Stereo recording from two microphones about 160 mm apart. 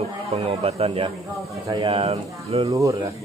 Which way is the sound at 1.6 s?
25° right (ahead or behind).